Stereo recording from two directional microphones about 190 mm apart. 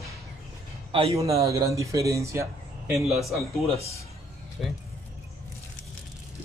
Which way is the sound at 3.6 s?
35° left (ahead or behind).